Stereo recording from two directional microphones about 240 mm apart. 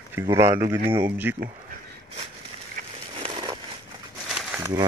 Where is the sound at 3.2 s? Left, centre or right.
Centre.